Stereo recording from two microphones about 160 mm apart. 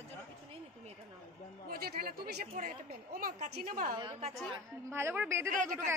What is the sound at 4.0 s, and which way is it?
Speech, 35° right (ahead or behind).